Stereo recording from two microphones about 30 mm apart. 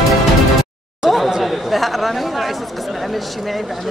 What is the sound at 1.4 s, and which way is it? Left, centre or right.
Speech, centre.